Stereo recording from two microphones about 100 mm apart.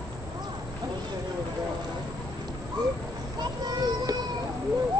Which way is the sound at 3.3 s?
40° right (ahead or behind).